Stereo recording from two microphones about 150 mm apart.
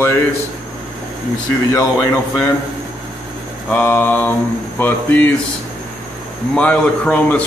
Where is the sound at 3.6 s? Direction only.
15° left (ahead or behind).